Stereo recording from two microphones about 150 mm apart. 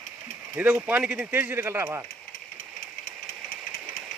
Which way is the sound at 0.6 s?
10° right (ahead or behind).